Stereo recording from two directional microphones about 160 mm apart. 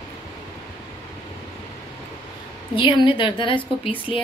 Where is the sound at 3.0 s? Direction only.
30° left (ahead or behind).